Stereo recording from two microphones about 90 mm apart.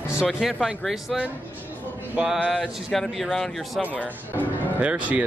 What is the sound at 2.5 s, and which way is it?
Speech, 5° left (ahead or behind).